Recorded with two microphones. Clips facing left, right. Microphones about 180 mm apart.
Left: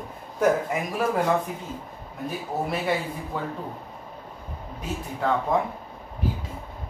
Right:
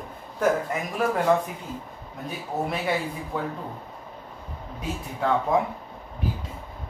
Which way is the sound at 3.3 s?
Centre (ahead or behind).